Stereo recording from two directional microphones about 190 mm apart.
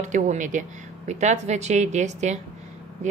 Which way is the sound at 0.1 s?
40° right (ahead or behind).